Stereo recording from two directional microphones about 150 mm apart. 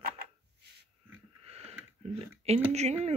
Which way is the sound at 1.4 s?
45° right (ahead or behind).